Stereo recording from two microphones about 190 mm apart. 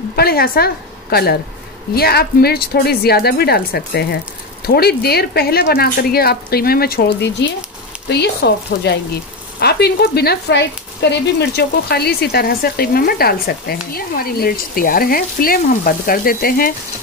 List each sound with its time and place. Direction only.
0.1 s speech: 55° left (ahead or behind)